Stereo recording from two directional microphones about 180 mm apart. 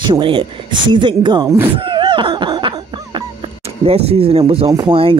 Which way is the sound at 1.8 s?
30° right (ahead or behind).